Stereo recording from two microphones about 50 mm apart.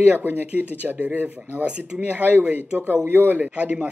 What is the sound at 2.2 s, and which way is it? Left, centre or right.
A man's voice, right.